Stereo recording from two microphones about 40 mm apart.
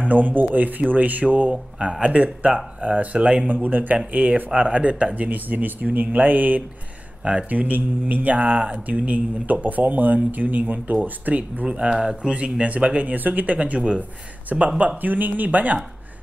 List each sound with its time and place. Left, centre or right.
0.1 s speech: right
1.2 s mantra: right
3.4 s speech: right
4.1 s mantra: right
5.9 s speech: right
7.4 s mantra: right
11.1 s speech: right
11.6 s mantra: right
11.9 s speech: centre
12.7 s mantra: right
13.7 s speech: right
15.0 s speech: right